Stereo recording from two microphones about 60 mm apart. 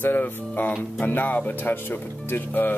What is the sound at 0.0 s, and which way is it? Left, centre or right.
Speech, left.